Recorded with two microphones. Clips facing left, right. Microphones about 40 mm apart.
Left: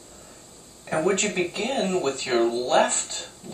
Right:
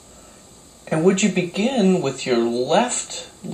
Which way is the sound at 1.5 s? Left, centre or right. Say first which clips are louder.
Right 7 dB; right.